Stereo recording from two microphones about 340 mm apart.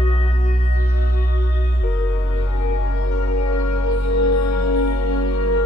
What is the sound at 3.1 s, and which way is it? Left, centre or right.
Music, left.